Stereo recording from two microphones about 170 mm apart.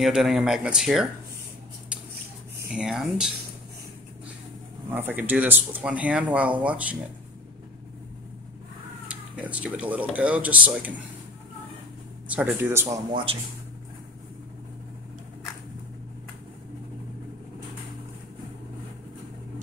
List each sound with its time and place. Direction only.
0.0 s speech: 5° right (ahead or behind)
2.7 s speech: 5° right (ahead or behind)
4.9 s speech: 10° right (ahead or behind)
9.1 s speech: 5° right (ahead or behind)
12.3 s speech: 10° right (ahead or behind)
13.1 s speech: 30° right (ahead or behind)